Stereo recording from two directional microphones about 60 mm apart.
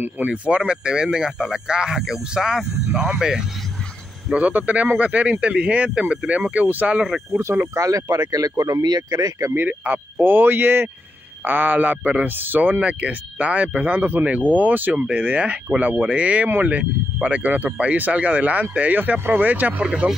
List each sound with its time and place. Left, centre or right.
0.0 s speech: right; by 3.4 s centre
4.3 s speech: right
7.3 s speech: right
9.5 s speech: right
16.4 s speech: right
16.7 s speech: right